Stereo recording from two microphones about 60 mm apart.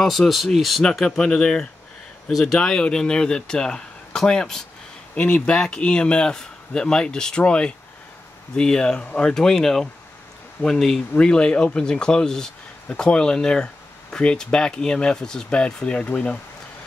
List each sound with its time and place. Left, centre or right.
0.0 s speech: centre